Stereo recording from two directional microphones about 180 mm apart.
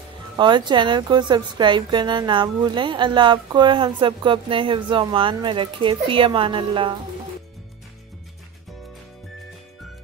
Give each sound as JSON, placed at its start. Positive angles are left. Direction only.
{"t": 0.4, "sound": "a woman's voice", "side_deg": -25}